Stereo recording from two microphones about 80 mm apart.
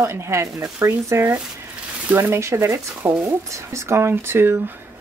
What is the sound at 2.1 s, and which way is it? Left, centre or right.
A woman's voice, right.